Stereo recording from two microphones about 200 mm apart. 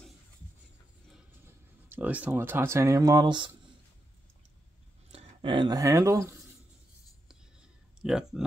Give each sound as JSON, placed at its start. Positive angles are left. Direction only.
{"t": 1.9, "sound": "speech", "side_deg": -5}
{"t": 5.1, "sound": "speech", "side_deg": -25}
{"t": 8.0, "sound": "speech", "side_deg": -5}